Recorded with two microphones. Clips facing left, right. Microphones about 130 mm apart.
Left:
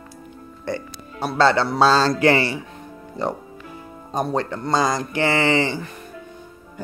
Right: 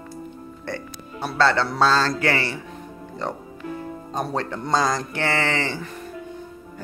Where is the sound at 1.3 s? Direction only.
15° left (ahead or behind).